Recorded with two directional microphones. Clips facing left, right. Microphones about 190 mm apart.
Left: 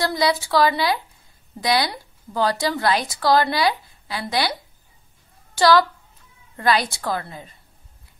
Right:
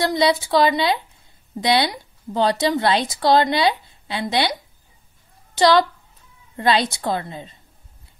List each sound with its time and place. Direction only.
0.0 s a woman's voice: 25° right (ahead or behind)